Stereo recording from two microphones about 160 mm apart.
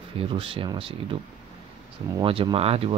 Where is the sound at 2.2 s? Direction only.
35° right (ahead or behind).